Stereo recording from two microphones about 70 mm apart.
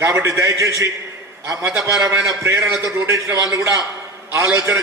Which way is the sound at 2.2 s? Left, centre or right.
Right.